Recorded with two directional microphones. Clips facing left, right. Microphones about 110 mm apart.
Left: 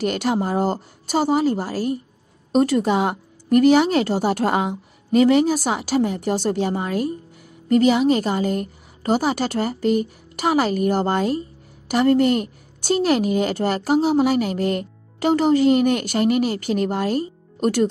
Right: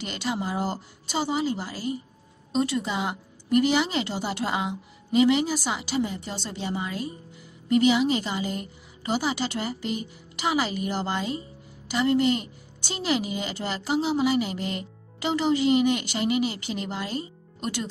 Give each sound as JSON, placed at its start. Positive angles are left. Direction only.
{"t": 0.0, "sound": "a woman's voice", "side_deg": 55}